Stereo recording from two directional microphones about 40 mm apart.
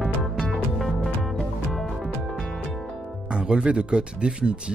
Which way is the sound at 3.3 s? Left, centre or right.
Right.